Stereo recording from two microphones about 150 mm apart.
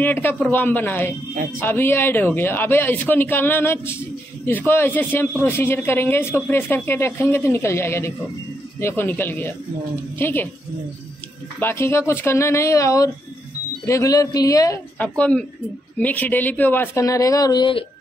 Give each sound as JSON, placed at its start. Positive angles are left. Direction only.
{"t": 0.0, "sound": "speech", "side_deg": 15}
{"t": 11.6, "sound": "a man's voice", "side_deg": 15}
{"t": 15.0, "sound": "speech", "side_deg": 5}